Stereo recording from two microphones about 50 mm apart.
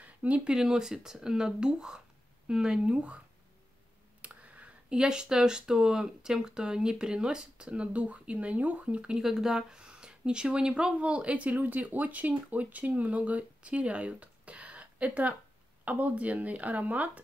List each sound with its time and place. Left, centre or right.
0.0 s a sound: right
0.5 s speech: centre
4.2 s clicking: right
4.9 s speech: centre
9.2 s speech: centre; by 17.2 s right